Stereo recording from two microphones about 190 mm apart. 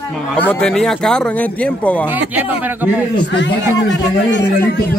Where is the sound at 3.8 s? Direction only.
70° left (ahead or behind).